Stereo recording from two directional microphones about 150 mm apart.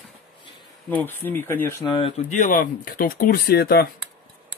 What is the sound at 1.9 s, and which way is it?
Speech, 40° left (ahead or behind).